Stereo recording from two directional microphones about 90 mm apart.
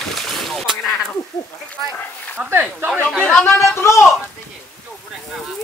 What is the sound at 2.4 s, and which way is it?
Speech, 20° right (ahead or behind).